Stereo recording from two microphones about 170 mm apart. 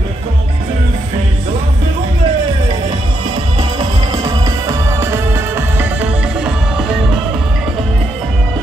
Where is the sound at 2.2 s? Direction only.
35° right (ahead or behind); by 7.9 s 5° right (ahead or behind).